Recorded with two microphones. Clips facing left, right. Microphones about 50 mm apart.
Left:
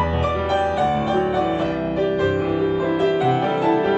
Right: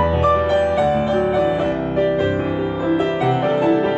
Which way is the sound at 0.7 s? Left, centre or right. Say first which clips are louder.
Right 2 dB; right.